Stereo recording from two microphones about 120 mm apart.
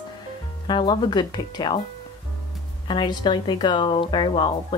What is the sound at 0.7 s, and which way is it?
A woman's voice, 40° left (ahead or behind).